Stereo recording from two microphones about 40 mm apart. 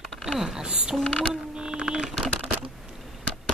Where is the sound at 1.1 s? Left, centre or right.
Left.